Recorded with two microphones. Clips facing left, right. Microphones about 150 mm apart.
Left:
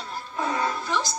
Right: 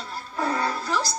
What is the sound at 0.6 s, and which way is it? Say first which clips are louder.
Speech: even; 20° left (ahead or behind).